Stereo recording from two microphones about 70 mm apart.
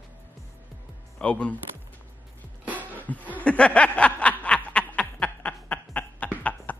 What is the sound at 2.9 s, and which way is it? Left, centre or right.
Chuckle, left.